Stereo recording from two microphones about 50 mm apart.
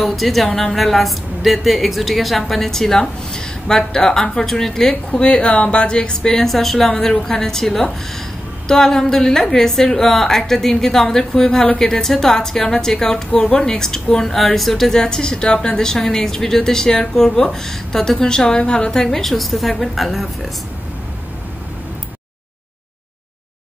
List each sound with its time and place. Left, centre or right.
0.0 s a woman's voice: centre
19.0 s a woman's voice: centre